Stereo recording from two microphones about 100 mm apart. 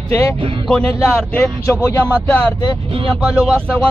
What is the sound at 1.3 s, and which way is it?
Speech, 10° left (ahead or behind).